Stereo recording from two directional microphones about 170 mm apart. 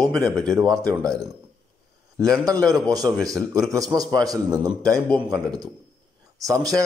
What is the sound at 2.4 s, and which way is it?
Speech, 20° right (ahead or behind).